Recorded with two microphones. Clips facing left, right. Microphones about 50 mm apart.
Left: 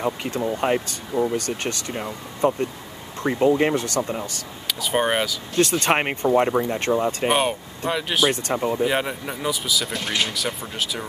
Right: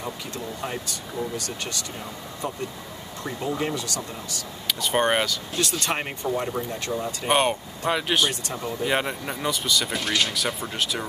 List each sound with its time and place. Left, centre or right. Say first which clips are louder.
0.0 s speech: left 8 dB; left
4.6 s speech: left 1 dB; centre
5.6 s speech: left 8 dB; left
7.2 s speech: left 1 dB; centre
8.3 s speech: left 7 dB; left
8.8 s speech: left 2 dB; centre
10.0 s speech: even; centre
10.3 s speech: even; centre